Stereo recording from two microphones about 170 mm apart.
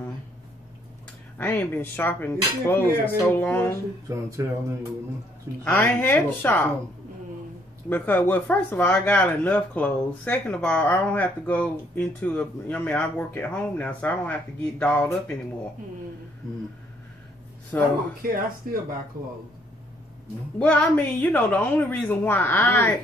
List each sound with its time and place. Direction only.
1.4 s speech: 10° left (ahead or behind)
4.1 s speech: 15° right (ahead or behind)
5.6 s speech: 10° left (ahead or behind)
7.9 s speech: 10° left (ahead or behind)
17.7 s speech: 10° left (ahead or behind)
18.2 s speech: 60° right (ahead or behind)
20.5 s speech: 10° left (ahead or behind)